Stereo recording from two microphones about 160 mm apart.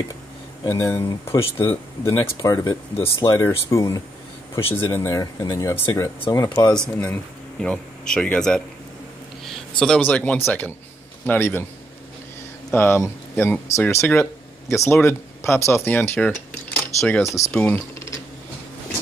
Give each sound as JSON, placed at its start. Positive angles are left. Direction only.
{"t": 0.7, "sound": "speech", "side_deg": 15}
{"t": 6.7, "sound": "speech", "side_deg": 5}
{"t": 9.8, "sound": "speech", "side_deg": 5}
{"t": 12.7, "sound": "speech", "side_deg": 15}